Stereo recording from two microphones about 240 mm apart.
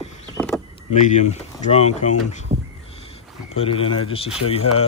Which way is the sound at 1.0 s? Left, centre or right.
Left.